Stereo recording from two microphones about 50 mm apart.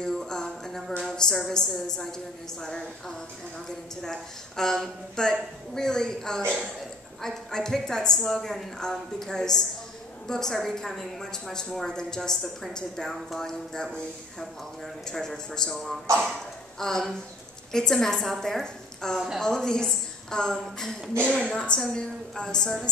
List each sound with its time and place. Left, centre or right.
0.0 s music: centre
0.9 s speech: centre
15.0 s speech: centre
19.1 s a woman's voice: centre
19.4 s a woman's voice: centre